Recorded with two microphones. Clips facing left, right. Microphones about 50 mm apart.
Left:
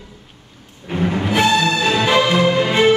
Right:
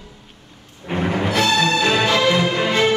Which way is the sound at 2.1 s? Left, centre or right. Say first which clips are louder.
Left 2 dB; centre.